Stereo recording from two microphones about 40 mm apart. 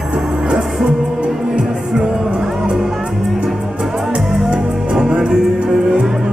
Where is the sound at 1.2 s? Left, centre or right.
Right.